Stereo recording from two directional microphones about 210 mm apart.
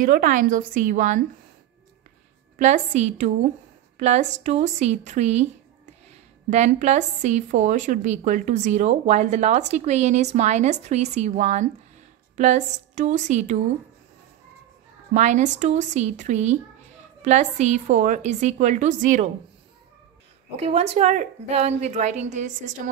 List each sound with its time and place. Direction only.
0.0 s speech: 40° right (ahead or behind)
2.6 s speech: 35° right (ahead or behind)
15.1 s speech: 35° right (ahead or behind)
20.5 s speech: 30° right (ahead or behind)